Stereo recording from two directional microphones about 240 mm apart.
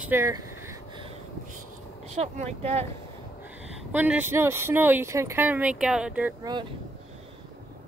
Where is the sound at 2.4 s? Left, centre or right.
Right.